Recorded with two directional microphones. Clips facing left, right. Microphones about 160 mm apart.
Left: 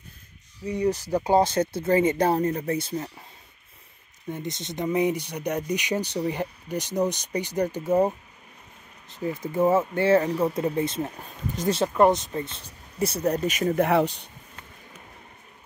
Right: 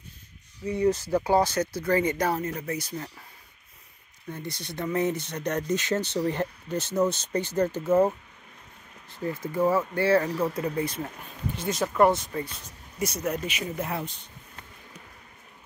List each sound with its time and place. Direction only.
0.7 s speech: 15° left (ahead or behind)
4.3 s speech: 20° left (ahead or behind)
9.1 s speech: 20° left (ahead or behind)
11.5 s speech: 40° left (ahead or behind)
11.8 s speech: 20° left (ahead or behind); by 14.3 s 70° left (ahead or behind)